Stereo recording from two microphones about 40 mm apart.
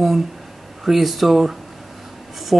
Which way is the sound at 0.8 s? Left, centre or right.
Centre.